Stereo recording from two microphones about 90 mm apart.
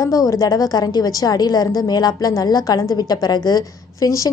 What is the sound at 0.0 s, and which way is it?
A woman's voice, 40° left (ahead or behind).